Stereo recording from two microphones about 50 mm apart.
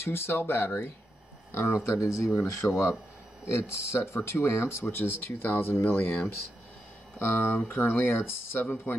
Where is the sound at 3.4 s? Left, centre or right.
Left.